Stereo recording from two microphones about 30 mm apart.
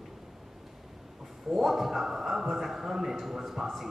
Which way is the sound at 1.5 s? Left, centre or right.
Centre.